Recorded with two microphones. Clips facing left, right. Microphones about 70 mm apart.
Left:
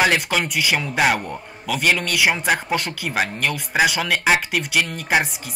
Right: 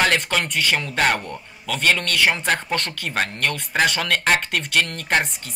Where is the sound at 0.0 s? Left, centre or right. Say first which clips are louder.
Left 1 dB; centre.